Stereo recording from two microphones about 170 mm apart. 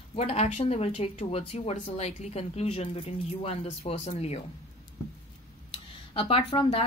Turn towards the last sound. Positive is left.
turn(degrees=30)  # may be behind; listen again after turning